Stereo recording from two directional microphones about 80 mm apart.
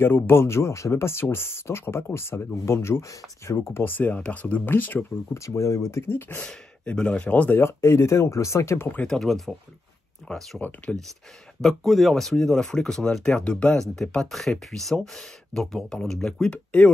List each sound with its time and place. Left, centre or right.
0.0 s speech: left
5.3 s speech: left
6.4 s speech: centre
7.6 s speech: left
9.0 s speech: centre